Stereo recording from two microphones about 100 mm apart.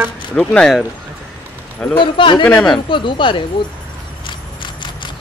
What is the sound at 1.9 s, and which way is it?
Speech, 55° left (ahead or behind).